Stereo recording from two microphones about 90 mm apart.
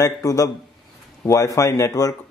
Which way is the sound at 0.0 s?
40° left (ahead or behind).